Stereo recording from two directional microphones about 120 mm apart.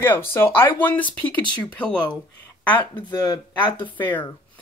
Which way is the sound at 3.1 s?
30° left (ahead or behind).